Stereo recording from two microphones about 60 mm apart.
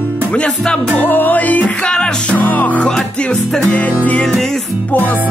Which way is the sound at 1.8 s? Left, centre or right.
Centre.